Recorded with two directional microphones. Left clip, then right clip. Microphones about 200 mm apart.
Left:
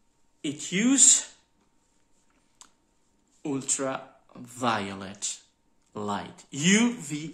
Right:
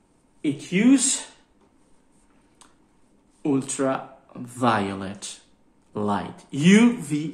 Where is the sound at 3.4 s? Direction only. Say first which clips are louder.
Right 6 dB; 15° left (ahead or behind).